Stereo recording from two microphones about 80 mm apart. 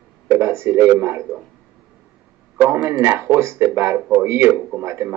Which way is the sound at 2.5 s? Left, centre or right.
Right.